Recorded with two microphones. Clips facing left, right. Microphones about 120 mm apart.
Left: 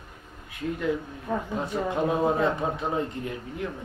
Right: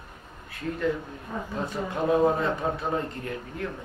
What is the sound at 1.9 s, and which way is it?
Speech, 20° left (ahead or behind).